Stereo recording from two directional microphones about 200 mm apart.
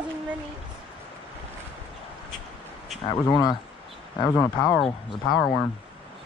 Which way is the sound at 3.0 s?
20° left (ahead or behind).